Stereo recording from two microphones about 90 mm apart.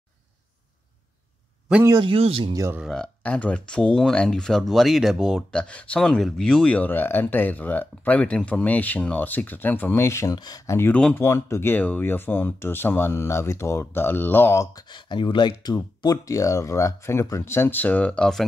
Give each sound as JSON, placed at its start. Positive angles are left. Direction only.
{"t": 2.0, "sound": "speech", "side_deg": -80}
{"t": 2.9, "sound": "speech", "side_deg": 10}
{"t": 10.0, "sound": "speech", "side_deg": 30}
{"t": 10.3, "sound": "speech", "side_deg": 50}
{"t": 11.1, "sound": "speech", "side_deg": 30}
{"t": 11.7, "sound": "speech", "side_deg": 20}
{"t": 14.9, "sound": "speech", "side_deg": 60}